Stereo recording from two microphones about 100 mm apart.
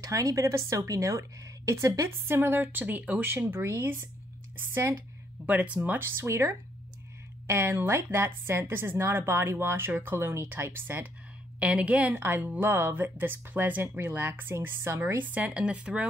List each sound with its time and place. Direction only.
0.0 s a woman's voice: 35° right (ahead or behind); by 16.1 s 10° right (ahead or behind)